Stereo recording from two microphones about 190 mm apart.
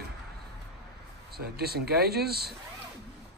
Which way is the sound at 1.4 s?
55° right (ahead or behind).